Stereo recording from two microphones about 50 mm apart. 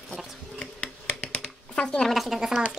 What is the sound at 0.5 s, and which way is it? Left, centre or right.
Finger snapping, centre.